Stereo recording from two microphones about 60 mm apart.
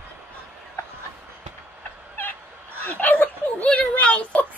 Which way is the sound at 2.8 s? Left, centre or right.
Left.